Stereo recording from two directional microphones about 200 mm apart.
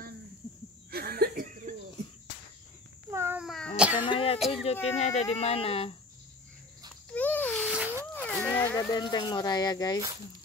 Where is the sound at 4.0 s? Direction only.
25° left (ahead or behind).